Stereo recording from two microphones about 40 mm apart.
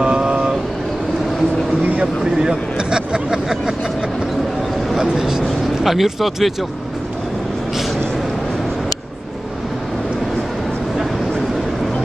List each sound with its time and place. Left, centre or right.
0.0 s vehicle: right
1.8 s vehicle: right
2.3 s speech: centre
5.0 s vehicle: centre
5.9 s speech: centre